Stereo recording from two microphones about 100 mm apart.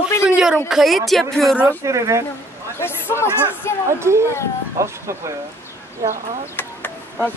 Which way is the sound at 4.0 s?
25° right (ahead or behind).